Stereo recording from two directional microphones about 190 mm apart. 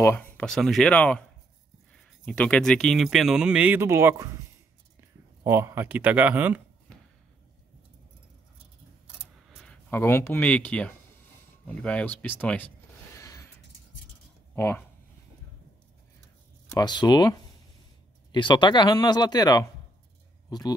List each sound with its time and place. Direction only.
0.0 s speech: 10° left (ahead or behind); by 4.3 s 15° right (ahead or behind)
5.4 s speech: 15° right (ahead or behind)
9.5 s a sound: centre (ahead or behind)
9.8 s speech: 10° left (ahead or behind)
13.1 s a sound: 15° left (ahead or behind)
14.5 s speech: 10° left (ahead or behind)
16.7 s speech: 20° left (ahead or behind)